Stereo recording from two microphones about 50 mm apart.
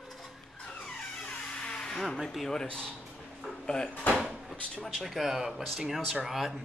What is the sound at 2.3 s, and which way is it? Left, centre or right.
Speech, centre.